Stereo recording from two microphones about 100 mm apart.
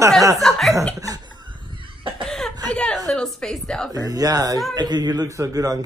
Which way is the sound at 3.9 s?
40° right (ahead or behind).